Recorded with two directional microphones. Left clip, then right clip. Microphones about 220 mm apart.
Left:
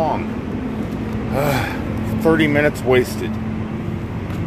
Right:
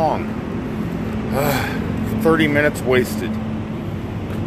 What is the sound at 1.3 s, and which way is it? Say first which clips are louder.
Speech: even; 10° left (ahead or behind).